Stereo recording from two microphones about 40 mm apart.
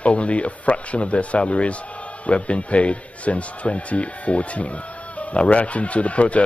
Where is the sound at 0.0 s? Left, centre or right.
Left.